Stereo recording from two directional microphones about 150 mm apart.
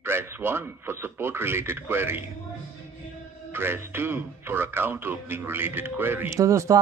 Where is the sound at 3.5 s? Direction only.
15° right (ahead or behind).